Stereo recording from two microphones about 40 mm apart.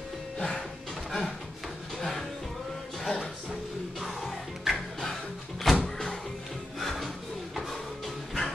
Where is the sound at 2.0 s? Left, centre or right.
Centre.